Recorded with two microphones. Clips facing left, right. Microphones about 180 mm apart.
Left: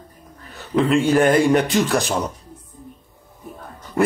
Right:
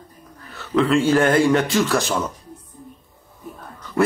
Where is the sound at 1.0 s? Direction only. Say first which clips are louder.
Left 1 dB; 15° left (ahead or behind).